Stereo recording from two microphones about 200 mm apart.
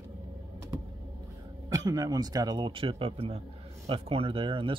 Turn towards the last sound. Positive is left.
turn(degrees=-25)  # may be behind; listen again after turning